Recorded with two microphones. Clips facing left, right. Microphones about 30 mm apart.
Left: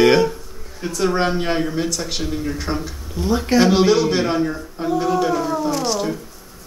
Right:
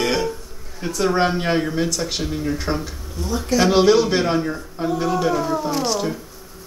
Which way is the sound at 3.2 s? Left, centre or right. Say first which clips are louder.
Left 5 dB; left.